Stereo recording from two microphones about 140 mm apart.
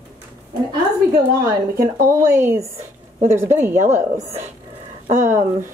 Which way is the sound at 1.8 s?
25° right (ahead or behind).